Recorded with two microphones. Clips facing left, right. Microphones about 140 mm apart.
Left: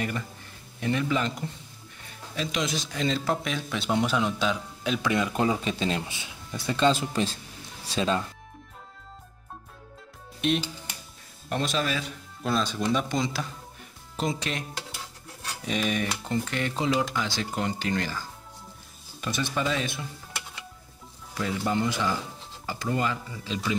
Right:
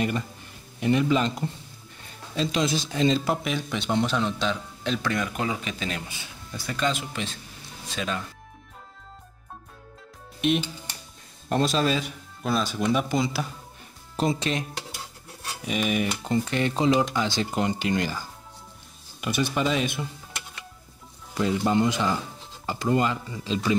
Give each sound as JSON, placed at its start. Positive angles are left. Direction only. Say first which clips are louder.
{"t": 0.7, "sound": "speech", "louder": "right 4 dB", "side_deg": -20}
{"t": 2.3, "sound": "speech", "louder": "right 4 dB", "side_deg": -30}
{"t": 3.3, "sound": "speech", "louder": "right 2 dB", "side_deg": -5}
{"t": 5.1, "sound": "speech", "louder": "left 2 dB", "side_deg": 20}
{"t": 5.4, "sound": "speech", "louder": "left 4 dB", "side_deg": 30}
{"t": 10.4, "sound": "speech", "louder": "right 2 dB", "side_deg": 0}
{"t": 11.4, "sound": "speech", "louder": "right 5 dB", "side_deg": -35}
{"t": 12.4, "sound": "speech", "louder": "right 1 dB", "side_deg": -5}
{"t": 14.1, "sound": "speech", "louder": "right 4 dB", "side_deg": -30}
{"t": 15.6, "sound": "speech", "louder": "right 2 dB", "side_deg": -5}
{"t": 16.4, "sound": "speech", "louder": "right 6 dB", "side_deg": -25}
{"t": 19.2, "sound": "speech", "louder": "right 3 dB", "side_deg": -10}
{"t": 21.4, "sound": "speech", "louder": "right 5 dB", "side_deg": -25}